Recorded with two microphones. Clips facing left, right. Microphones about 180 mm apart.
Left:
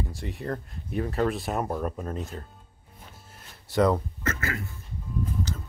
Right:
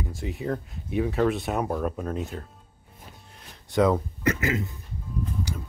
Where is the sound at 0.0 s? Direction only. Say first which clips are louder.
Right 2 dB; centre (ahead or behind).